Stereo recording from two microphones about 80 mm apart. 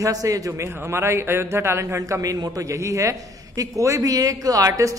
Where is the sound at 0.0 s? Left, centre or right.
Right.